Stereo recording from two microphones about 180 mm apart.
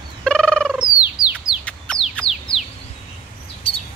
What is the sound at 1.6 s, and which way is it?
Chicken, 5° left (ahead or behind).